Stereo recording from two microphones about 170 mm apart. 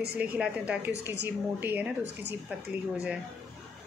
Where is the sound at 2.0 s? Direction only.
85° right.